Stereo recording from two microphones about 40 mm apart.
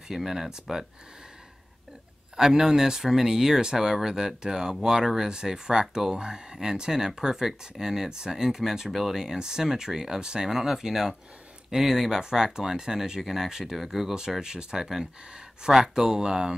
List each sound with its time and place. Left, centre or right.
0.1 s speech: centre
2.3 s speech: centre
14.4 s speech: centre